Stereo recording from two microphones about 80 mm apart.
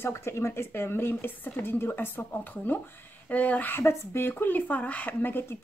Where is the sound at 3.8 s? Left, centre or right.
Left.